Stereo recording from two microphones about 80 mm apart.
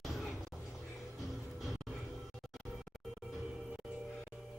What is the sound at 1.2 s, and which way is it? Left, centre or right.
Music, centre.